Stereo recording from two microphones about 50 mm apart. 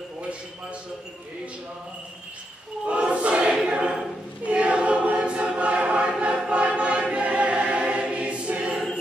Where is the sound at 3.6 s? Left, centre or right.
Right.